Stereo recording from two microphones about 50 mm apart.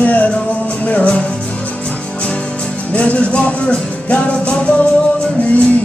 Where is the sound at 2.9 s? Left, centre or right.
Left.